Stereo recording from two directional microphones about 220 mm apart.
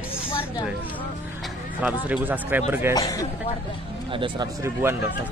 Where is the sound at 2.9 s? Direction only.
15° left (ahead or behind).